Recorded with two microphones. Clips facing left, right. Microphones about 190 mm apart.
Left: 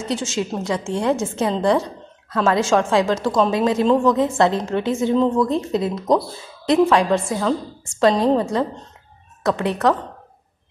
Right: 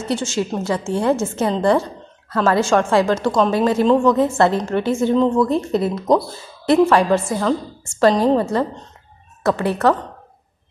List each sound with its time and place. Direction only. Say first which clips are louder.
0.0 s a woman's voice: right 2 dB; centre (ahead or behind)